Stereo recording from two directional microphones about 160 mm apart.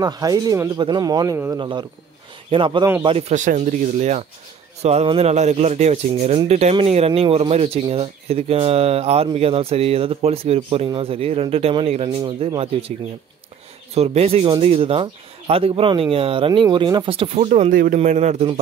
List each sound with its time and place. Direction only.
0.0 s speech: 25° right (ahead or behind)
1.6 s speech: 30° right (ahead or behind)
12.2 s speech: 30° right (ahead or behind)
13.9 s speech: 40° right (ahead or behind)
17.6 s speech: 60° right (ahead or behind)
17.9 s speech: 45° right (ahead or behind)